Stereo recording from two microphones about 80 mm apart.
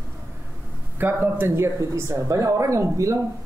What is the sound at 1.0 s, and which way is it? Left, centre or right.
Speech, right.